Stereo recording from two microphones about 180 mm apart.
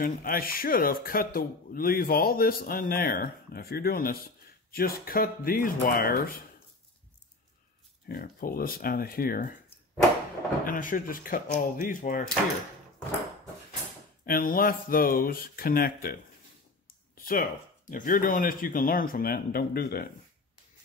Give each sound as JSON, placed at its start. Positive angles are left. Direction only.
{"t": 0.0, "sound": "speech", "side_deg": 55}
{"t": 8.1, "sound": "speech", "side_deg": 55}
{"t": 10.6, "sound": "speech", "side_deg": 50}
{"t": 14.2, "sound": "speech", "side_deg": 55}
{"t": 17.2, "sound": "speech", "side_deg": 55}